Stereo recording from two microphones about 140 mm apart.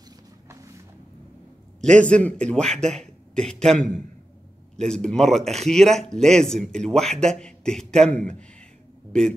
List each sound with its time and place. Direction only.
1.8 s a man's voice: 5° left (ahead or behind)